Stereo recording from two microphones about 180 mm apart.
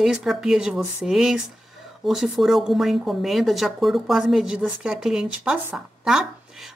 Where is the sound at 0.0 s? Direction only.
5° right (ahead or behind).